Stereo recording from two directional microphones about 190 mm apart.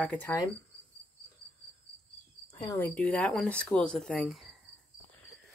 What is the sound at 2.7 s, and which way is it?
Speech, 10° left (ahead or behind).